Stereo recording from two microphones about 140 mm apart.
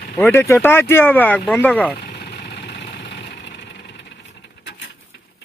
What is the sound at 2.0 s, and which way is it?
Engine, 90° left.